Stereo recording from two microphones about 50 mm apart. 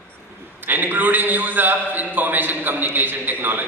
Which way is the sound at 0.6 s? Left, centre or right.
Right.